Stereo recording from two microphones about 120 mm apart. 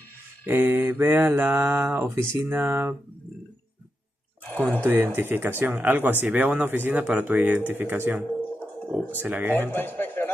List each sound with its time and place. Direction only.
0.5 s mantra: 20° right (ahead or behind)
4.6 s speech: 15° right (ahead or behind)
9.6 s a man's voice: 15° left (ahead or behind)